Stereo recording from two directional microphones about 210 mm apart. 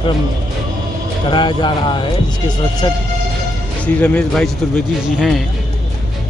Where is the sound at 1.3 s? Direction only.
20° left (ahead or behind).